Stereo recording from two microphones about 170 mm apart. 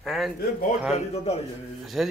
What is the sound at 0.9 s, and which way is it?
Speech, 40° left (ahead or behind).